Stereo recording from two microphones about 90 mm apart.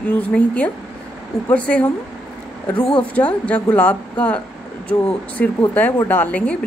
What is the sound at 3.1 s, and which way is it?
Speech, 15° left (ahead or behind).